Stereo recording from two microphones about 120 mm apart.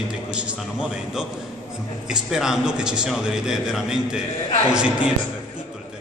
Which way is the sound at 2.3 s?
5° right (ahead or behind).